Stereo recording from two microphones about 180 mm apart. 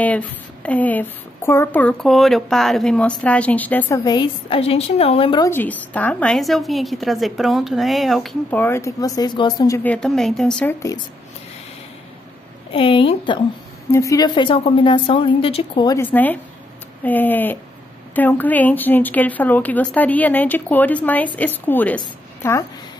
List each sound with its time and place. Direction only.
0.0 s a woman's voice: 10° left (ahead or behind)
4.0 s a woman's voice: 20° left (ahead or behind)
4.6 s a woman's voice: 35° left (ahead or behind)
5.4 s a woman's voice: 10° left (ahead or behind)
9.8 s a woman's voice: 5° left (ahead or behind)
12.7 s a woman's voice: 30° left (ahead or behind)
16.0 s a woman's voice: 10° left (ahead or behind)